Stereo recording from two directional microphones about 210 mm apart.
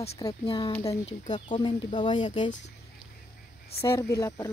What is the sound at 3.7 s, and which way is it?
Speech, 25° left (ahead or behind).